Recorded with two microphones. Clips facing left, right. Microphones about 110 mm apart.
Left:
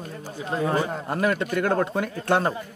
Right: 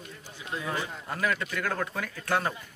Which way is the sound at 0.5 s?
45° left (ahead or behind).